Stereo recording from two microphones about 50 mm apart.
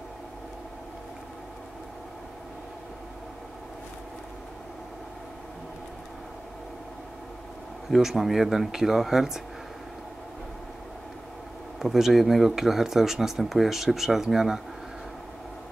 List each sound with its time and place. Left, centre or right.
7.9 s speech: centre
11.8 s speech: centre